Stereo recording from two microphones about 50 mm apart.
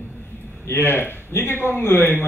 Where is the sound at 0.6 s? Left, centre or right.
Left.